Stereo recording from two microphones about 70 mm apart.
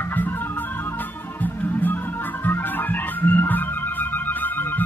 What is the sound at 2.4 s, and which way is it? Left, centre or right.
Organ, left.